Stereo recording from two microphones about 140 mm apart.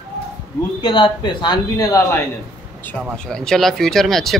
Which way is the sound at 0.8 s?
35° left (ahead or behind).